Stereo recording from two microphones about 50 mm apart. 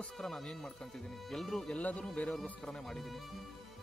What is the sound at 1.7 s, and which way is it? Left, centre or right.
Speech, left.